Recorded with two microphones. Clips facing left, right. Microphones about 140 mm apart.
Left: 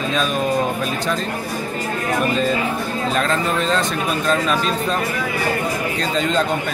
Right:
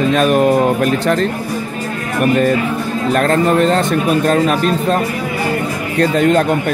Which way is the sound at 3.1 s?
55° right (ahead or behind).